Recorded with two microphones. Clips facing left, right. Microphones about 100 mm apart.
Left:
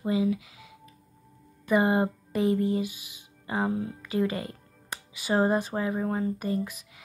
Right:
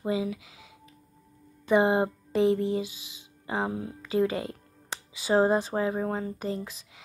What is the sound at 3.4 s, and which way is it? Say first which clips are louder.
Speech: left 2 dB; 10° right (ahead or behind).